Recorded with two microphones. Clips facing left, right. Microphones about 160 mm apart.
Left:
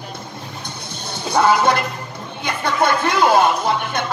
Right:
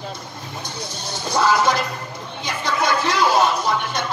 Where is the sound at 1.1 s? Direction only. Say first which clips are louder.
Left 3 dB; 55° left (ahead or behind).